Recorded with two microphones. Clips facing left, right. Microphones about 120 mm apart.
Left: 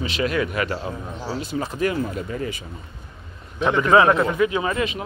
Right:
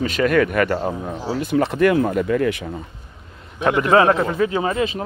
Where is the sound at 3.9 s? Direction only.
30° right (ahead or behind).